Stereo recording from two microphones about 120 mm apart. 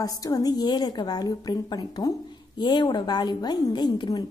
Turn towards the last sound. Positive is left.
turn(degrees=35)  # may be behind; listen again after turning